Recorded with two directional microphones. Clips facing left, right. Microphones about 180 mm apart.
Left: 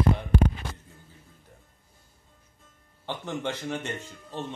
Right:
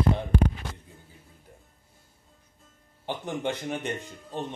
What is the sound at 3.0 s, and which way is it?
Speech, 15° right (ahead or behind).